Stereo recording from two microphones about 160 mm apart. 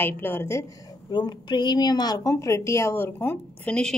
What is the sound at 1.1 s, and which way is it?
A woman's voice, 30° left (ahead or behind).